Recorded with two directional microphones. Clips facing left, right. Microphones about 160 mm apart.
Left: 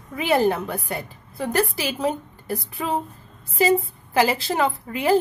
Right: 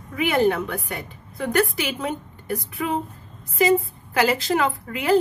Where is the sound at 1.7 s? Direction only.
35° left (ahead or behind).